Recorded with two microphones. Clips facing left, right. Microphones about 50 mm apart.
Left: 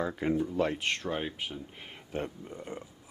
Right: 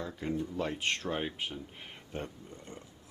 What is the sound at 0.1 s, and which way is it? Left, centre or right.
Speech, left.